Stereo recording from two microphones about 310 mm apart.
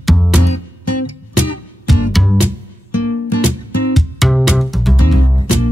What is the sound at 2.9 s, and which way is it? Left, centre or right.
Music, left.